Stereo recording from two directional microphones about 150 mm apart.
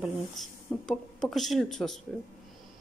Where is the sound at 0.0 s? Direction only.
Centre (ahead or behind).